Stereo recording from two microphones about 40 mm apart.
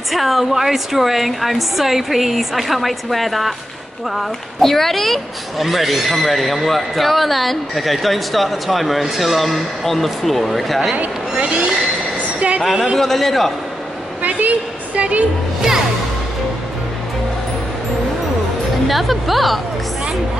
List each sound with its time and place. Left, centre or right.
0.1 s speech: centre
11.3 s a sound: right
12.9 s speech: centre
15.0 s speech: right
18.9 s speech: centre